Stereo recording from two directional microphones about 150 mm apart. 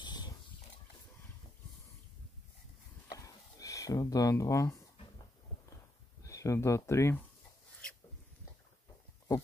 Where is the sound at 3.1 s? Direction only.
25° left (ahead or behind).